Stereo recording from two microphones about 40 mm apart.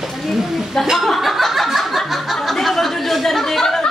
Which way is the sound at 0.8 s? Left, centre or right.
Centre.